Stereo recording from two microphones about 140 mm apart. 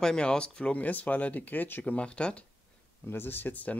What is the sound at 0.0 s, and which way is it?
Speech, 5° left (ahead or behind).